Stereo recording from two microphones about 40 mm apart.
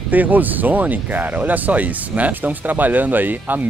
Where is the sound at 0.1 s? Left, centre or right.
Right.